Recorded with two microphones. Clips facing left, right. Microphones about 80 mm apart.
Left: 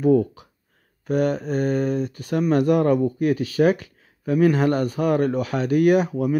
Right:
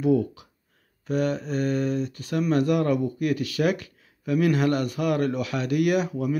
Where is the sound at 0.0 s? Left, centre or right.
Left.